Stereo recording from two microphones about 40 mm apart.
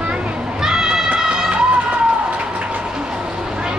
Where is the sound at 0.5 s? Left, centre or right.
Centre.